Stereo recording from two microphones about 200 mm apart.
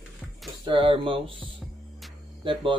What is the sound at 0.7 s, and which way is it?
Speech, 25° right (ahead or behind).